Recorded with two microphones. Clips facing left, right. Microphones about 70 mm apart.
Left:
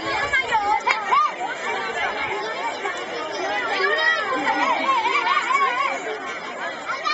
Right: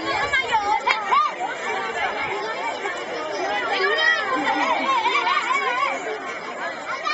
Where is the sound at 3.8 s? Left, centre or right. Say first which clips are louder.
Even; centre.